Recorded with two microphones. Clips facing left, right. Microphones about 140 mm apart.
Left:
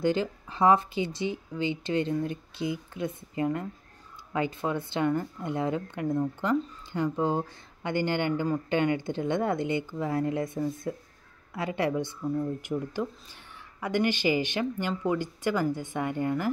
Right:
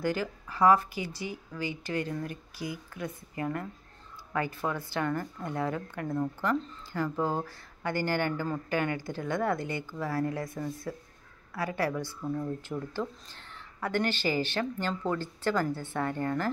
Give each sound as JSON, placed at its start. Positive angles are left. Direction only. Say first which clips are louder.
{"t": 0.0, "sound": "speech", "louder": "left 4 dB", "side_deg": 25}